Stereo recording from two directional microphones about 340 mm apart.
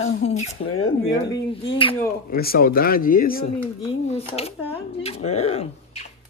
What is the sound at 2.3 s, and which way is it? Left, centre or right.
Speech, left.